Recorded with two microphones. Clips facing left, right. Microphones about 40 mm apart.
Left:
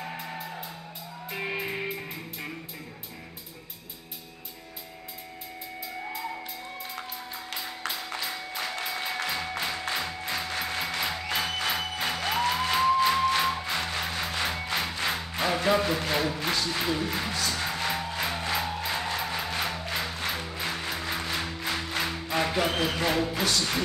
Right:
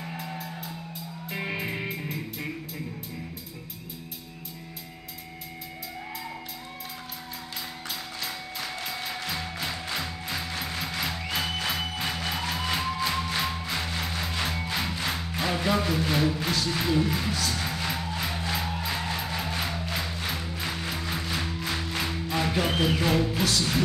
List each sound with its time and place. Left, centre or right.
0.0 s music: centre
1.3 s music: centre
8.2 s music: centre
16.1 s speech: centre
17.8 s music: centre
22.9 s speech: centre